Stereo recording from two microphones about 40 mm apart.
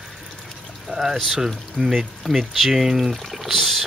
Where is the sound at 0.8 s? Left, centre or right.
Centre.